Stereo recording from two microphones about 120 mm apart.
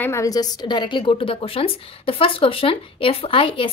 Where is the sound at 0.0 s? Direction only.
25° left (ahead or behind).